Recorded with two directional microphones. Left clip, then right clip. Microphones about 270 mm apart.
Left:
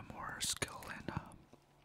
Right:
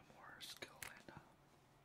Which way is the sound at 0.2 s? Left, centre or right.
Left.